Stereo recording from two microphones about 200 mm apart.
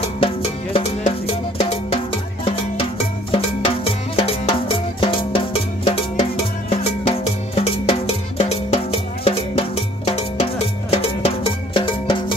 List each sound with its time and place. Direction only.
0.7 s music: 30° left (ahead or behind)
6.8 s cowbell: 30° left (ahead or behind)
10.9 s music: 30° left (ahead or behind)